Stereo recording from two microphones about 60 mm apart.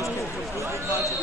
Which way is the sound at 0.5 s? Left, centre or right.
Right.